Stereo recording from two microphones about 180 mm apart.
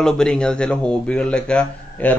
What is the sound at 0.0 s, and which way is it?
Speech, 5° left (ahead or behind).